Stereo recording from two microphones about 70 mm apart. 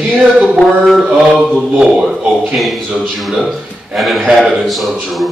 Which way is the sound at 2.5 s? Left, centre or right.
Centre.